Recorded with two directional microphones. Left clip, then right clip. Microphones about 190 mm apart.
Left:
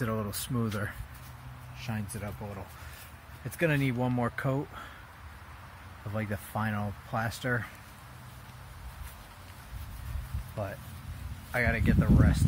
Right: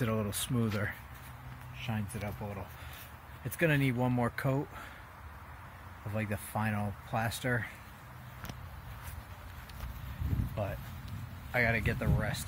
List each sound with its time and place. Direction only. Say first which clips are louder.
0.0 s speech: even; 15° right (ahead or behind); by 4.8 s centre (ahead or behind)
6.1 s speech: left 2 dB; 5° left (ahead or behind)
11.5 s speech: left 1 dB; 10° right (ahead or behind)